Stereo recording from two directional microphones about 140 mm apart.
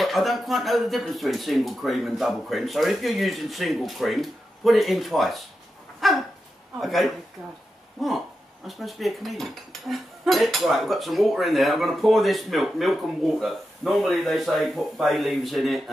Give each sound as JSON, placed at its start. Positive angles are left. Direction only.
{"t": 0.0, "sound": "speech", "side_deg": 0}
{"t": 5.9, "sound": "dog", "side_deg": 0}
{"t": 6.8, "sound": "speech", "side_deg": 0}